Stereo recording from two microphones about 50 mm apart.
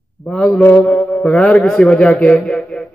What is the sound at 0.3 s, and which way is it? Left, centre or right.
A man's voice, centre.